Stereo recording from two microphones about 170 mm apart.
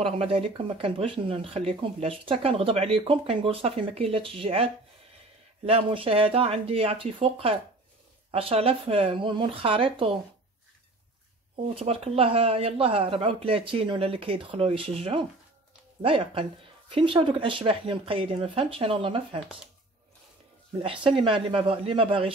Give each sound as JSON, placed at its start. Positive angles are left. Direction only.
{"t": 0.0, "sound": "speech", "side_deg": -35}
{"t": 5.7, "sound": "speech", "side_deg": -30}
{"t": 11.5, "sound": "speech", "side_deg": -35}
{"t": 20.8, "sound": "speech", "side_deg": -30}